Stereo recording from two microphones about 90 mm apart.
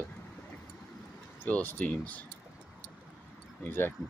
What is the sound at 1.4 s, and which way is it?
Speech, 20° left (ahead or behind).